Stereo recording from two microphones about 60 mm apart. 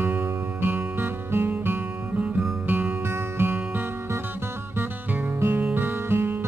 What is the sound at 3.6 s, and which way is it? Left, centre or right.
Music, right.